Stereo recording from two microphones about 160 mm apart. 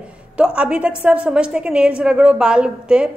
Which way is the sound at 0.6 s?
5° right (ahead or behind).